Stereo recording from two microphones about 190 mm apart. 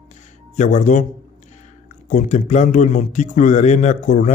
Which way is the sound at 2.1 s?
40° left (ahead or behind).